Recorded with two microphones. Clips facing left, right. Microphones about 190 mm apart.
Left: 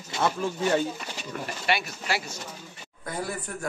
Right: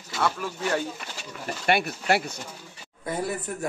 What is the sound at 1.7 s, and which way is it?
Speech, 55° right (ahead or behind).